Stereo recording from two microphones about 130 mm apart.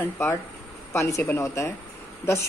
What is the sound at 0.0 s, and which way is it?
Speech, 20° left (ahead or behind).